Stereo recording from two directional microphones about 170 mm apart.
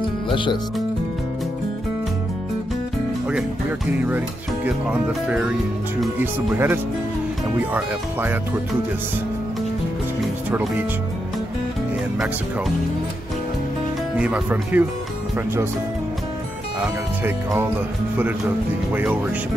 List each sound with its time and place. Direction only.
0.3 s speech: 30° left (ahead or behind)
4.6 s speech: 5° right (ahead or behind)
14.1 s speech: 5° right (ahead or behind)
16.8 s speech: 5° right (ahead or behind)